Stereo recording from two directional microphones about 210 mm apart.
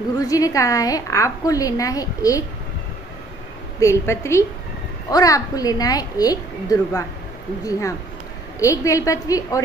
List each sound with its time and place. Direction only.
0.2 s a woman's voice: 15° left (ahead or behind)
3.8 s a woman's voice: 15° left (ahead or behind)
8.5 s a woman's voice: 15° left (ahead or behind)